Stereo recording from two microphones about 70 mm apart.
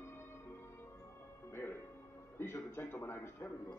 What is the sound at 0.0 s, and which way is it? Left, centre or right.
Music, left.